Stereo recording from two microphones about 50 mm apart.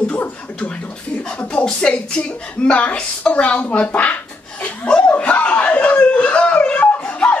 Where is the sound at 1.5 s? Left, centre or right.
Centre.